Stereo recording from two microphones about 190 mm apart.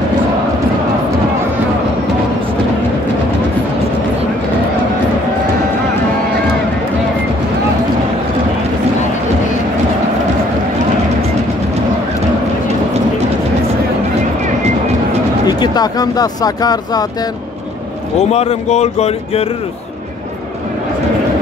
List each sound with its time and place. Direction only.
15.4 s speech: 20° left (ahead or behind)
18.3 s speech: 35° left (ahead or behind)